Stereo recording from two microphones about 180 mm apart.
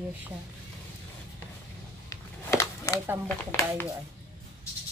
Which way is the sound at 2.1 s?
15° left (ahead or behind).